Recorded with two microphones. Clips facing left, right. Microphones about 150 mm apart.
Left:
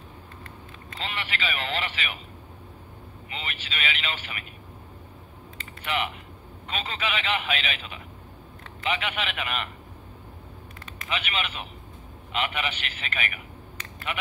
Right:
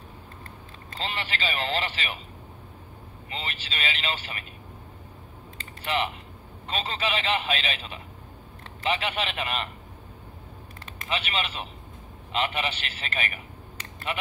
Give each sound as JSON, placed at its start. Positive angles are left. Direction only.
{"t": 0.9, "sound": "a man's voice", "side_deg": -30}
{"t": 3.3, "sound": "a man's voice", "side_deg": -30}
{"t": 5.6, "sound": "typing", "side_deg": -30}
{"t": 6.7, "sound": "a man's voice", "side_deg": -35}
{"t": 11.1, "sound": "a man's voice", "side_deg": -35}